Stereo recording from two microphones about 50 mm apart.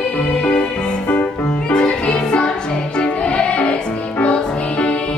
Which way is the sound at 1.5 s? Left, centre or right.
Left.